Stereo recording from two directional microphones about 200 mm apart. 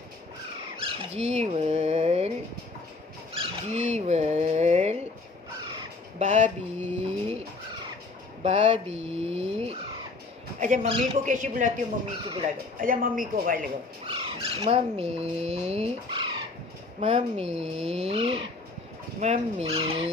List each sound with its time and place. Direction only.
0.8 s dog: 30° right (ahead or behind)
3.3 s a sound: 35° right (ahead or behind)
6.1 s pigeon: 35° right (ahead or behind)
8.4 s a sound: 30° right (ahead or behind)
10.6 s speech: 35° right (ahead or behind)
12.8 s speech: 45° right (ahead or behind)
14.0 s speech: 30° right (ahead or behind)